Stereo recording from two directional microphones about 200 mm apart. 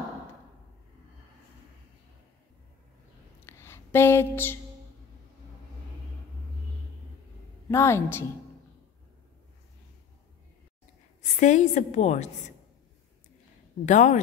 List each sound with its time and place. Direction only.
3.4 s a sound: 10° left (ahead or behind)
7.7 s a woman's voice: 15° left (ahead or behind)
11.3 s a woman's voice: 40° left (ahead or behind)
13.8 s a woman's voice: 35° left (ahead or behind)